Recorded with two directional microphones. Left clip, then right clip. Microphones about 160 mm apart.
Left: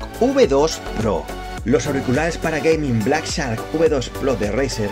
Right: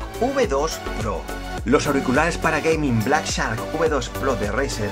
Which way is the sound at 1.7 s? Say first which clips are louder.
Even; 5° right (ahead or behind).